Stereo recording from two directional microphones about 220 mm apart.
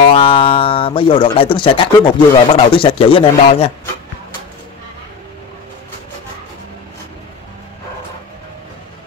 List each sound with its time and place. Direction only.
0.1 s speech: 25° left (ahead or behind)